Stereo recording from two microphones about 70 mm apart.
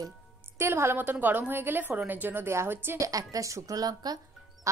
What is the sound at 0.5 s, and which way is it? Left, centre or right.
A woman's voice, right.